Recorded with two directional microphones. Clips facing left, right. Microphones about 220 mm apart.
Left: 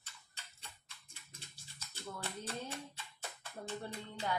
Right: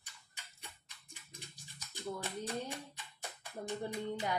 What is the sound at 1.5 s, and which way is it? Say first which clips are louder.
Scratch: right 4 dB; 15° right (ahead or behind).